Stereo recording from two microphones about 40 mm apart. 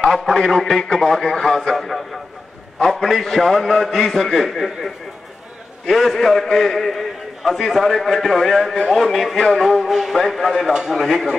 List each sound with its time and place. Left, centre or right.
0.2 s a man's voice: centre
10.7 s a man's voice: centre
11.0 s speech: centre